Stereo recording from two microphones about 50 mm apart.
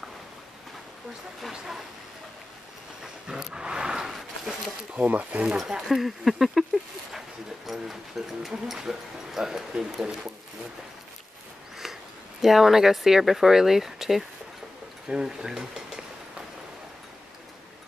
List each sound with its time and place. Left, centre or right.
3.0 s dog: centre
4.9 s speech: right
5.7 s speech: centre
11.8 s speech: centre